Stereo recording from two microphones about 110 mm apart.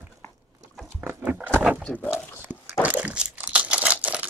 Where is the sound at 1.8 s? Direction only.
15° left (ahead or behind).